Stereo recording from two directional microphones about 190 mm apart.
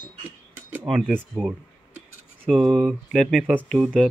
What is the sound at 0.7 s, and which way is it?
Speech, 5° right (ahead or behind).